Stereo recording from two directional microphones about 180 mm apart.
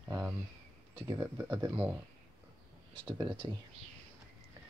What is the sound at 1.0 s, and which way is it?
Speech, 15° right (ahead or behind).